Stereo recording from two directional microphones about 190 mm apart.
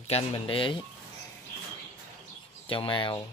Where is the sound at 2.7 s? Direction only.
25° left (ahead or behind).